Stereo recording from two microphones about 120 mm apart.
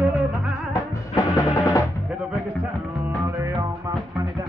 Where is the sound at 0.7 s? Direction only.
30° left (ahead or behind).